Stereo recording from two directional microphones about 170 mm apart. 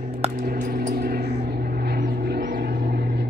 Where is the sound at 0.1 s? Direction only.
35° right (ahead or behind).